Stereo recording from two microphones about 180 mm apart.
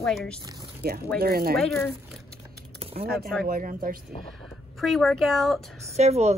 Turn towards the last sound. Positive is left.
turn(degrees=-35)  # may be behind; listen again after turning